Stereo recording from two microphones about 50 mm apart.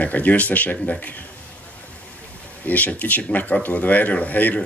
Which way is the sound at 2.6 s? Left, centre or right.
Left.